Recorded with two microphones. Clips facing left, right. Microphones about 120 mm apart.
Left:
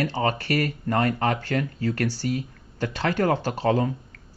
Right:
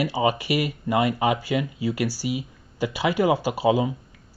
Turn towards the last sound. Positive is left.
turn(degrees=-10)  # may be behind; listen again after turning